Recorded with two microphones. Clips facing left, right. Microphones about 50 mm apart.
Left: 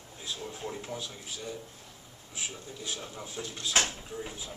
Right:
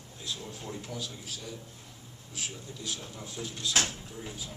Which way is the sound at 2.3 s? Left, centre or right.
Centre.